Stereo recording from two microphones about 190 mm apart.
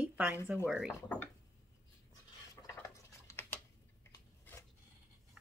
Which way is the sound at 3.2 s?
10° left (ahead or behind).